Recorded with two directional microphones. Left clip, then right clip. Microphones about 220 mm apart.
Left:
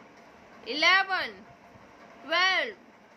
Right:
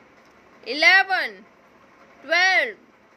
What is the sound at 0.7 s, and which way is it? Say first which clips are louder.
Speech: right 7 dB; 25° right (ahead or behind).